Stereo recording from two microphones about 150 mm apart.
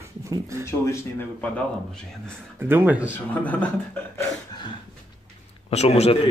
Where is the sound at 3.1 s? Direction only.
10° left (ahead or behind).